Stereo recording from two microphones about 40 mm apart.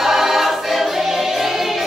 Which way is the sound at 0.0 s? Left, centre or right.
Centre.